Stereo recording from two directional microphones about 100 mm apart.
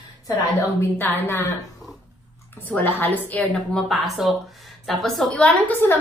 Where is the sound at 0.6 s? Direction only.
25° left (ahead or behind).